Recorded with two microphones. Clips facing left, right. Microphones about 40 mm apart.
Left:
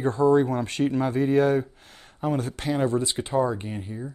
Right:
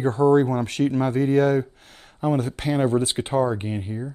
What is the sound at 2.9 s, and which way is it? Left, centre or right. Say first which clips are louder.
Speech: right 3 dB; right.